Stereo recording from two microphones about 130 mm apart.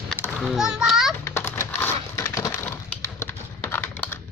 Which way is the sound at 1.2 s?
20° left (ahead or behind).